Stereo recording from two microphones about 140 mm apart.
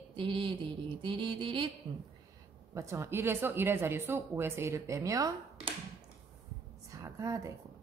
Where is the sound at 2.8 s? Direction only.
20° right (ahead or behind).